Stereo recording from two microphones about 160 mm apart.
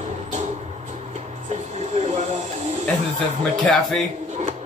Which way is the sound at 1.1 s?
45° right (ahead or behind).